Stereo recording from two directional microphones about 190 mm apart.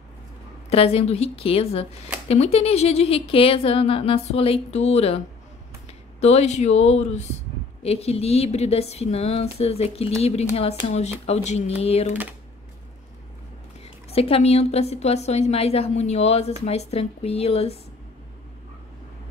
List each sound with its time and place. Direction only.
0.7 s speech: 30° left (ahead or behind)
6.2 s speech: 35° left (ahead or behind)
14.1 s speech: 30° left (ahead or behind)